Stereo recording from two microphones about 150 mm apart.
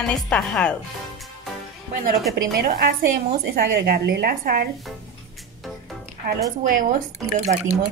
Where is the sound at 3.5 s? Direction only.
90° right.